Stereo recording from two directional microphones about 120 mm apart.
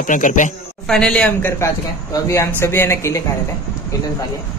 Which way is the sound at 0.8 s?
5° left (ahead or behind).